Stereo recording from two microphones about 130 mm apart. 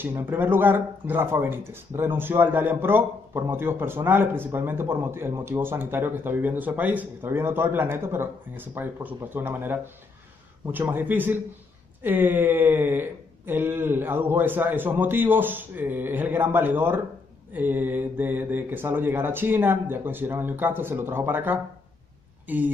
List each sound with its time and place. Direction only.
0.0 s speech: 15° right (ahead or behind)